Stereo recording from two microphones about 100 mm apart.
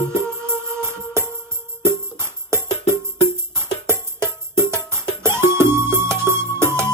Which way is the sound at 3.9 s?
25° right (ahead or behind).